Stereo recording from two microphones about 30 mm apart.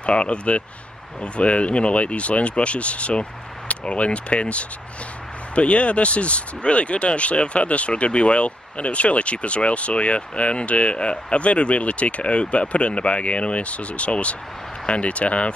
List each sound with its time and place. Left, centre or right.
0.0 s speech: left